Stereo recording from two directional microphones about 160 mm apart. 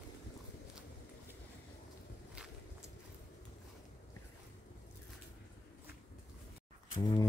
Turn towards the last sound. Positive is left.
turn(degrees=25)  # may be behind; listen again after turning